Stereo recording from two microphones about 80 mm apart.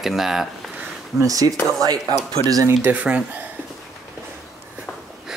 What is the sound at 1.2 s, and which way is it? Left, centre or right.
Speech, right.